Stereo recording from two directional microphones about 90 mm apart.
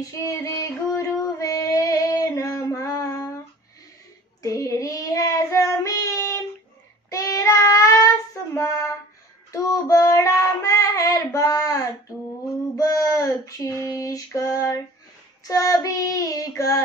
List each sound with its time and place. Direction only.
0.3 s female singing: 35° left (ahead or behind)
4.4 s child singing: 35° left (ahead or behind)
9.5 s child singing: 40° left (ahead or behind)
12.7 s a sound: 40° left (ahead or behind)
13.7 s female singing: 40° left (ahead or behind)
15.4 s child singing: 40° left (ahead or behind)